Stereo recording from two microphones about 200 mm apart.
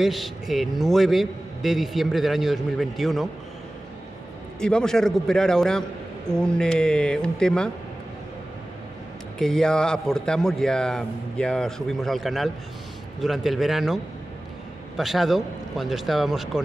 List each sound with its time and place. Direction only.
0.0 s a man's voice: centre (ahead or behind)
4.6 s a man's voice: 5° left (ahead or behind)
9.4 s a man's voice: 5° left (ahead or behind)